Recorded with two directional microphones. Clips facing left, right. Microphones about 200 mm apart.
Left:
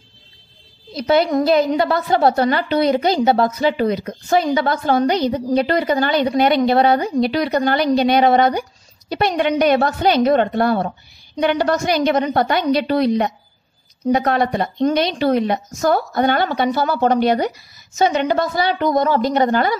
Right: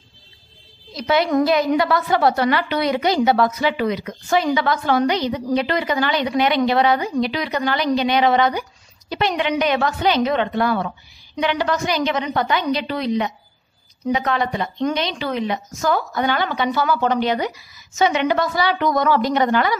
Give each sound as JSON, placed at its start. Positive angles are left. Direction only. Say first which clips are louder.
{"t": 0.9, "sound": "a woman's voice", "louder": "left 2 dB", "side_deg": 35}
{"t": 10.7, "sound": "a woman's voice", "louder": "left 3 dB", "side_deg": 30}
{"t": 11.3, "sound": "a woman's voice", "louder": "left 4 dB", "side_deg": 45}
{"t": 17.0, "sound": "a woman's voice", "louder": "left 4 dB", "side_deg": 45}